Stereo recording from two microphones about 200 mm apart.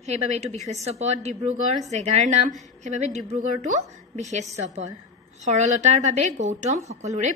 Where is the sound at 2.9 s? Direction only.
35° right (ahead or behind).